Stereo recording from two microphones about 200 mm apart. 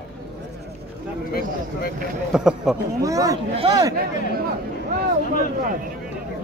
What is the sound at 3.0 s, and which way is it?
Speech, 15° right (ahead or behind).